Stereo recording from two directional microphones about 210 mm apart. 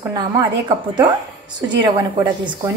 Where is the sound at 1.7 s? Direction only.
20° right (ahead or behind).